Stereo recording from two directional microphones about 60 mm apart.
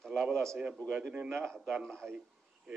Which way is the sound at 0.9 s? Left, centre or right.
Centre.